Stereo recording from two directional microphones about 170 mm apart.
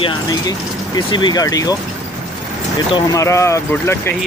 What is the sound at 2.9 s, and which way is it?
Speech, 20° left (ahead or behind).